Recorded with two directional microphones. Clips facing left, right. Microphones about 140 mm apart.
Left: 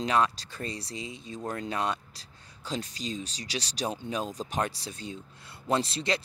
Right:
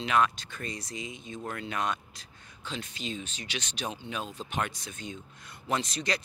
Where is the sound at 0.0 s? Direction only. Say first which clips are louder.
Left 1 dB; 35° left (ahead or behind).